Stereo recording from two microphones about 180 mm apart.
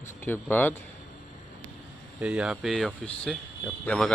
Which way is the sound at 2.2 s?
Centre (ahead or behind).